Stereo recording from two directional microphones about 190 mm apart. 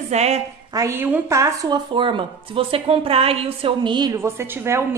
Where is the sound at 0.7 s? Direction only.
15° right (ahead or behind).